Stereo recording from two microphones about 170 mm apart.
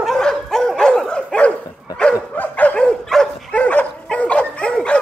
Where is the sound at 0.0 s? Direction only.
Centre (ahead or behind).